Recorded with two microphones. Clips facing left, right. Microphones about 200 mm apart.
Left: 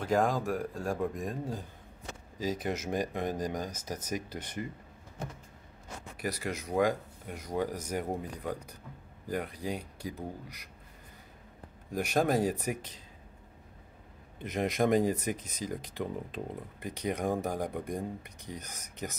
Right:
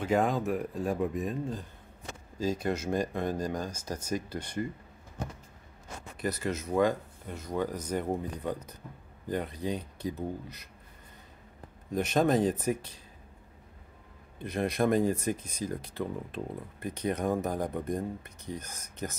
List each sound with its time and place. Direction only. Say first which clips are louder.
0.0 s speech: right 1 dB; 5° right (ahead or behind)
2.3 s speech: right 3 dB; 15° left (ahead or behind)
6.1 s speech: right 3 dB; 10° left (ahead or behind)
11.9 s speech: right 2 dB; 10° left (ahead or behind)
14.4 s speech: right 1 dB; 15° left (ahead or behind)